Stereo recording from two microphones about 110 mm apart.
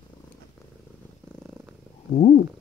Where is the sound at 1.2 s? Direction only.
20° right (ahead or behind).